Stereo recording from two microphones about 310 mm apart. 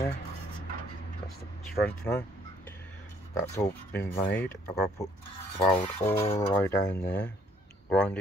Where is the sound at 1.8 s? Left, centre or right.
Centre.